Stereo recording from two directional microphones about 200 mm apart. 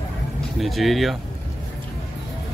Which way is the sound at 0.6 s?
Centre (ahead or behind).